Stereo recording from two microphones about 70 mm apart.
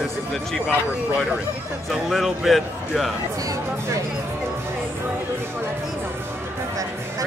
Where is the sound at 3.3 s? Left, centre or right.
Right.